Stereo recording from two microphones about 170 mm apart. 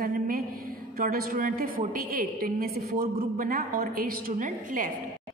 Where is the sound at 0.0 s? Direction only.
60° right (ahead or behind).